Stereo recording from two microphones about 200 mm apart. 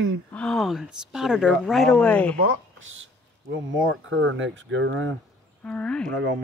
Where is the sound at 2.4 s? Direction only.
85° right.